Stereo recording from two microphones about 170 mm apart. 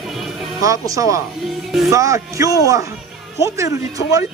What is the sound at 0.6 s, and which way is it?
Speech, 20° right (ahead or behind).